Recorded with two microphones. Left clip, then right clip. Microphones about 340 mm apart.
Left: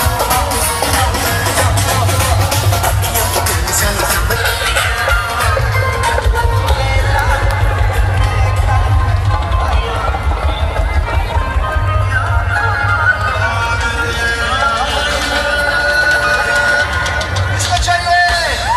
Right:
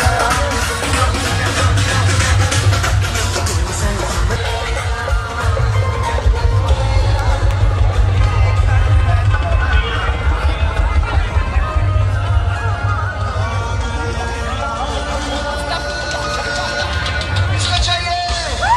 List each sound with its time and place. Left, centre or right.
16.1 s music: left